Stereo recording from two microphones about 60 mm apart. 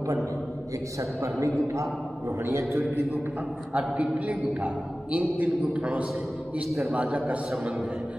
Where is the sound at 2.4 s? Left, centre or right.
Right.